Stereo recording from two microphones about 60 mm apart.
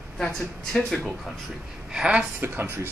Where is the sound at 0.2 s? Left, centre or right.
Centre.